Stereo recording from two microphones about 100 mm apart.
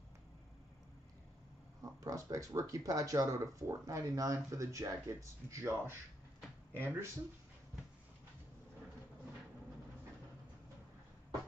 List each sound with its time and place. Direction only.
1.8 s speech: 35° right (ahead or behind)